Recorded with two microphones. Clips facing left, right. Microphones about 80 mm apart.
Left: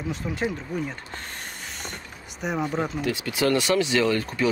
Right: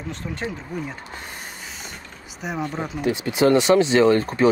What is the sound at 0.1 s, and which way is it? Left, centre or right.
Speech, centre.